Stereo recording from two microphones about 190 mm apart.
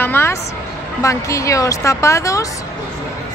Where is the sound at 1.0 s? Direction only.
15° left (ahead or behind).